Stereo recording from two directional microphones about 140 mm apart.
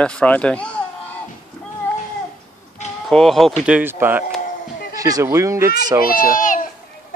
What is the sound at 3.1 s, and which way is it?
Speech, centre (ahead or behind).